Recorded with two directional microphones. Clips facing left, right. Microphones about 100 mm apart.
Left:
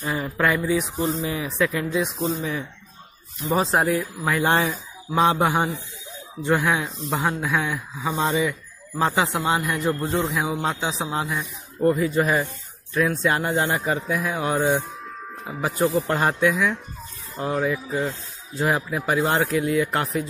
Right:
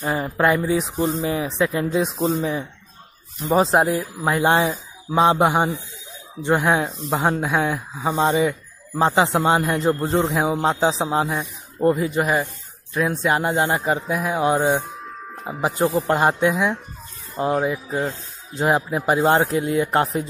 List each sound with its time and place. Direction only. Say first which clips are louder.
0.1 s speech: right 3 dB; 30° right (ahead or behind)
3.3 s speech: right 4 dB; 30° right (ahead or behind)
8.1 s speech: right 4 dB; 20° right (ahead or behind)